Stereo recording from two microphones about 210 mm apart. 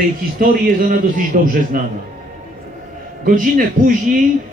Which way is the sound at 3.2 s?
40° right (ahead or behind).